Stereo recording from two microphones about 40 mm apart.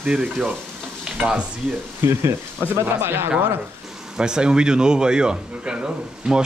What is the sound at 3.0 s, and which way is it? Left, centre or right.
Speech, right.